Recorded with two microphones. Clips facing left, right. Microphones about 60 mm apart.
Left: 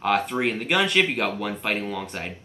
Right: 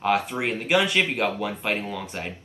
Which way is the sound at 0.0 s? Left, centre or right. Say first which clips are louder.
Left 1 dB; centre.